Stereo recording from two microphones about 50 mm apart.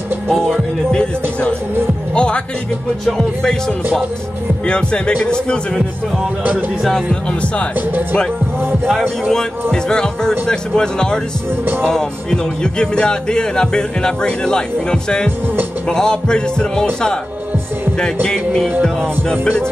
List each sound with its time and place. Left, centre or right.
0.3 s music: centre
3.2 s a man's voice: centre
6.1 s speech: right
9.3 s speech: centre